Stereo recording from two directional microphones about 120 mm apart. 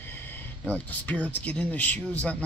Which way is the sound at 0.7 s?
10° left (ahead or behind).